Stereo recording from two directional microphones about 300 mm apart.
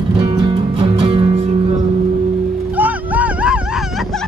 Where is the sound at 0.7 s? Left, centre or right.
Centre.